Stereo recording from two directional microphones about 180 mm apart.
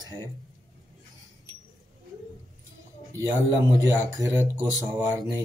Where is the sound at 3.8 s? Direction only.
15° right (ahead or behind).